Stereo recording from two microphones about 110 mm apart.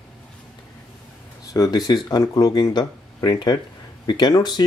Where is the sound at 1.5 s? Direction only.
35° left (ahead or behind).